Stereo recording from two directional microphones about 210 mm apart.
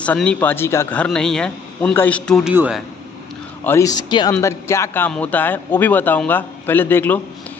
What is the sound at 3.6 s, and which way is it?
A man's voice, 15° left (ahead or behind).